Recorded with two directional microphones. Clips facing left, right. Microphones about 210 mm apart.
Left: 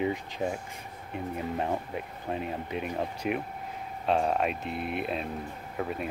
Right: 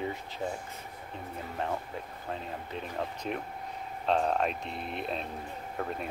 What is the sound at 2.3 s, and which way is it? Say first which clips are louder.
Speech: left 7 dB; 15° left (ahead or behind).